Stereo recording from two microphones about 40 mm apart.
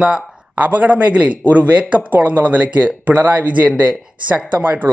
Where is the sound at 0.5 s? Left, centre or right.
Right.